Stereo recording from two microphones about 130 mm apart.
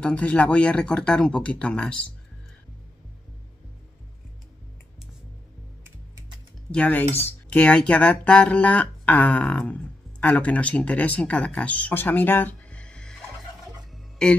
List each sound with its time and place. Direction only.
0.0 s speech: 10° left (ahead or behind)
6.7 s speech: 10° left (ahead or behind)
14.2 s music: 5° left (ahead or behind)